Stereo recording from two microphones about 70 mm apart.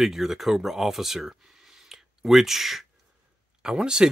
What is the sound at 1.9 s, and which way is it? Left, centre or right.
Whispering, centre.